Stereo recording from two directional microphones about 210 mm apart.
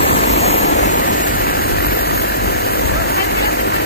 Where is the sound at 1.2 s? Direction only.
45° left (ahead or behind).